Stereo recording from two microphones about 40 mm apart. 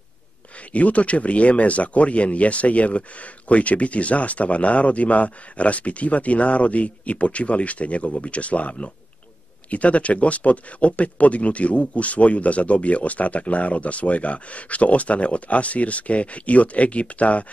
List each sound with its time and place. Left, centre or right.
0.7 s speech: left